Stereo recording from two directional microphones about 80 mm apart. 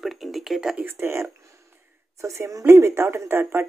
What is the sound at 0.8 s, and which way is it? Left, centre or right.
Speech, right.